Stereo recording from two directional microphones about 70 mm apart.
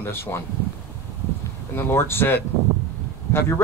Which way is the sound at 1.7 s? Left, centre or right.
Left.